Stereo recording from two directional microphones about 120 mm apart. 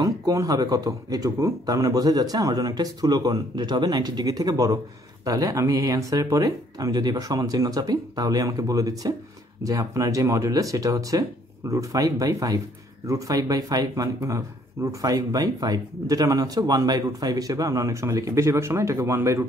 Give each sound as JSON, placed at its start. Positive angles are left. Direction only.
{"t": 0.0, "sound": "speech", "side_deg": -30}